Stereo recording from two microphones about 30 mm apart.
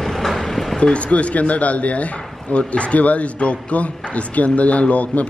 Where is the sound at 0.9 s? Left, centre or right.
Left.